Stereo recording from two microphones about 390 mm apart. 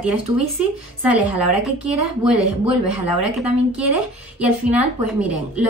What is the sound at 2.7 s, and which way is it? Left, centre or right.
Speech, right.